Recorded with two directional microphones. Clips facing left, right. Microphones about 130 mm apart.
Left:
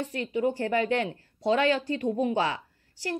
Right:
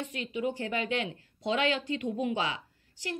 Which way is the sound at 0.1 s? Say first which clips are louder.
Left 6 dB; 15° right (ahead or behind).